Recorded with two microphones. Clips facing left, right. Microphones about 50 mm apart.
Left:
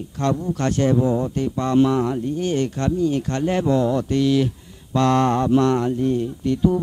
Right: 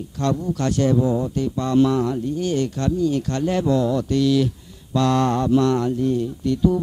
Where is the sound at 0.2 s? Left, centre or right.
Left.